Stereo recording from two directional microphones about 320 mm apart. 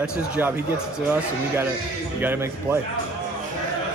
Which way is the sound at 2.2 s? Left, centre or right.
Centre.